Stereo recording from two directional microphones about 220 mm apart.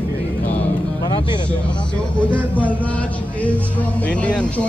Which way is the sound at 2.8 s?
5° left (ahead or behind).